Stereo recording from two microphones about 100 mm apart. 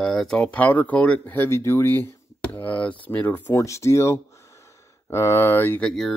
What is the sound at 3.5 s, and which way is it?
Speech, 30° left (ahead or behind).